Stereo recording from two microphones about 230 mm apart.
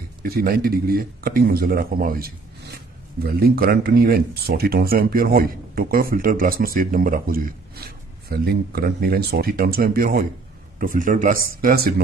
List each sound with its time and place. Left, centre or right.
0.2 s speech: right